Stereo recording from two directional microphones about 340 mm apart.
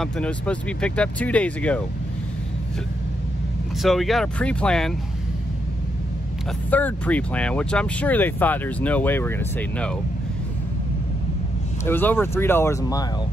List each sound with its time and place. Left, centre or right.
0.0 s speech: centre
3.8 s speech: centre
6.7 s speech: centre
11.8 s speech: centre